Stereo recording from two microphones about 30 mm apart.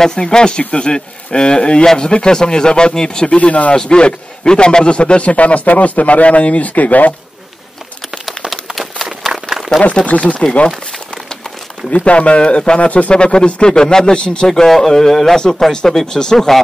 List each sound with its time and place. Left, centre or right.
0.0 s speech: left
3.3 s a man's voice: left
3.7 s a man's voice: left
8.7 s run: centre
9.7 s speech: left
10.1 s speech: left
11.9 s speech: left
14.7 s speech: centre
16.3 s speech: centre